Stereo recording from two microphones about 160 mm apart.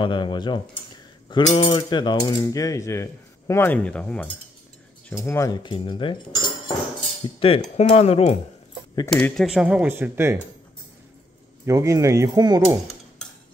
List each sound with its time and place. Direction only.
0.0 s cutlery: 30° left (ahead or behind)
9.1 s speech: centre (ahead or behind); by 10.4 s 15° right (ahead or behind)
11.6 s speech: 20° right (ahead or behind)